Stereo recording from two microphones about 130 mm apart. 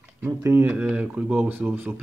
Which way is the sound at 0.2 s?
20° right (ahead or behind).